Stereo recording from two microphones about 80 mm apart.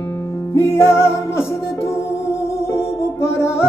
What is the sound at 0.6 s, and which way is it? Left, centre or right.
Music, left.